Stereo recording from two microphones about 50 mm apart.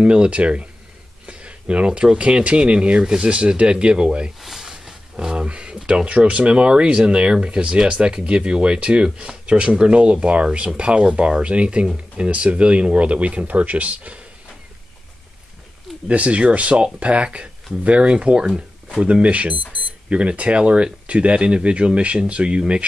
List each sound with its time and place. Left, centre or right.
0.0 s speech: right
4.4 s speech: centre; by 14.2 s right
16.1 s speech: right